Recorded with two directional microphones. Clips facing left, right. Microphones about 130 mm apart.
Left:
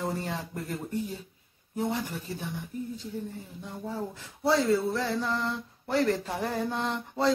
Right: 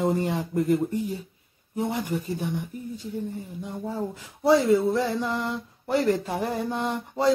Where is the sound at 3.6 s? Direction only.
15° right (ahead or behind).